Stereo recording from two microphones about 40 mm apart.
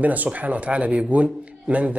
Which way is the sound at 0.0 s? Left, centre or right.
Right.